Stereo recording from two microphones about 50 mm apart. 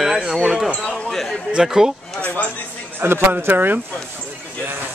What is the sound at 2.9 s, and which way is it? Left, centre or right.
Speech, right.